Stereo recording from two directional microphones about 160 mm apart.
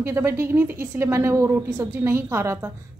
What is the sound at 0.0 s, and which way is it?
A woman's voice, 15° right (ahead or behind).